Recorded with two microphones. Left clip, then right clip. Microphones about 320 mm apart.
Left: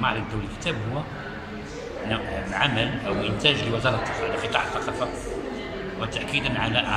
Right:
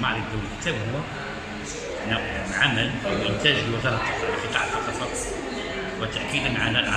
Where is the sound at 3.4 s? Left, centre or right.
Centre.